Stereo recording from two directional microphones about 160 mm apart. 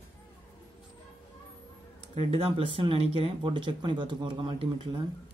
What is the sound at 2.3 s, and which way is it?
Speech, 35° right (ahead or behind).